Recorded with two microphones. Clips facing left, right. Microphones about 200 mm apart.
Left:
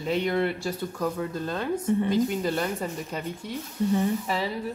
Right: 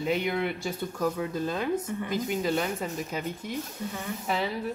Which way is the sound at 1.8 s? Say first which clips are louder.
Left 7 dB; 30° left (ahead or behind).